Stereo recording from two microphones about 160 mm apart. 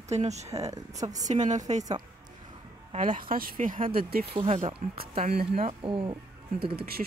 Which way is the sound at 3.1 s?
65° right (ahead or behind).